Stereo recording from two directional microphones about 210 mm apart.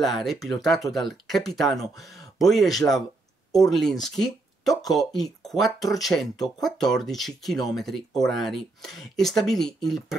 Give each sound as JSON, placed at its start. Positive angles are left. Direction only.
{"t": 0.0, "sound": "speech", "side_deg": 0}